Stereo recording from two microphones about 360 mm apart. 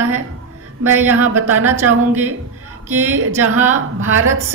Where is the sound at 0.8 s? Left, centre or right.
Centre.